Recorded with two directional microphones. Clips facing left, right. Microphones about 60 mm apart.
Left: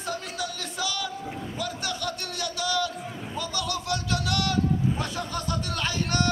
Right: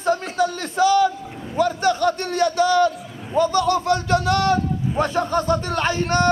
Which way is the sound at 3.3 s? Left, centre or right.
Right.